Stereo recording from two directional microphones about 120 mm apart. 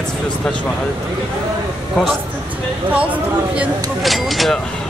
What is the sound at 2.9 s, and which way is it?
Speech, 10° right (ahead or behind).